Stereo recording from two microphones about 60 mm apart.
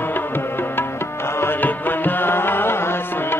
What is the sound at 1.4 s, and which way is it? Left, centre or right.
Music, left.